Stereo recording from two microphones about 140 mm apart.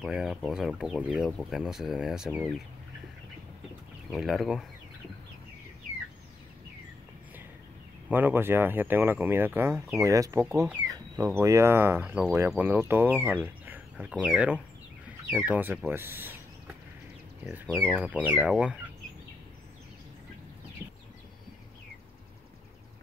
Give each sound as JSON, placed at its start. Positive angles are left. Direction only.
{"t": 0.0, "sound": "speech", "side_deg": -5}
{"t": 4.1, "sound": "speech", "side_deg": 0}
{"t": 8.1, "sound": "speech", "side_deg": -15}
{"t": 17.5, "sound": "speech", "side_deg": -10}